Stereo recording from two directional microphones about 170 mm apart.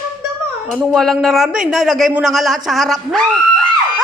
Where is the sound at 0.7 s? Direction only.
Centre (ahead or behind).